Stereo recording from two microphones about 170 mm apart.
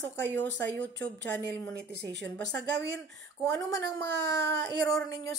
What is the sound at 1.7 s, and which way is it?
Speech, 80° right.